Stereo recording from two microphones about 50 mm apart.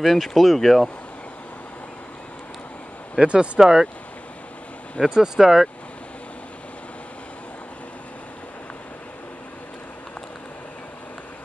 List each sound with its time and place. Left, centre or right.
0.0 s speech: centre
3.2 s speech: right
3.5 s speech: centre
5.1 s speech: centre